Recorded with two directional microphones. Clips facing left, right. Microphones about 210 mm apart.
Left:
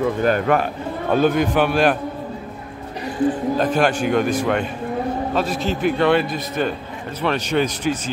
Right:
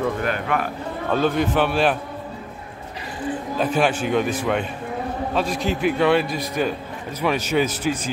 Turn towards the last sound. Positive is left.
turn(degrees=-5)  # may be behind; listen again after turning